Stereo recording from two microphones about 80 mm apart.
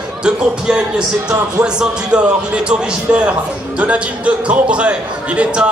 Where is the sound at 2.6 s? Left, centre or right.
Centre.